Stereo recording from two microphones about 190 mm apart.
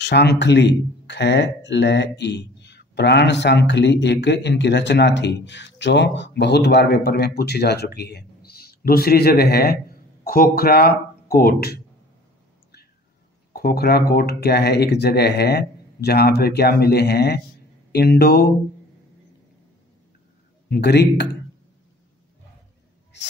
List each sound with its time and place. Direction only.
0.0 s speech: 60° left (ahead or behind)
13.6 s speech: 55° left (ahead or behind)
20.7 s speech: 60° left (ahead or behind)
23.1 s a sound: 65° left (ahead or behind)